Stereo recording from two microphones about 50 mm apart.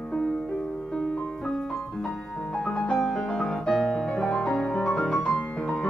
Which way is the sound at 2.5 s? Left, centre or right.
Left.